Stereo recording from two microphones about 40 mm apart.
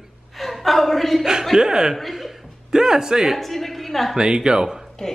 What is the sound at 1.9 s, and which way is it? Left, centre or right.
Chuckle, centre.